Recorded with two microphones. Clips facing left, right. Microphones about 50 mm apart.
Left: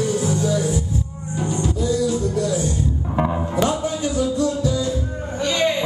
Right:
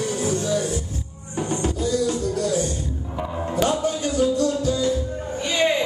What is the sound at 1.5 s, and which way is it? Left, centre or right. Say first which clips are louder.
Music: left 1 dB; right.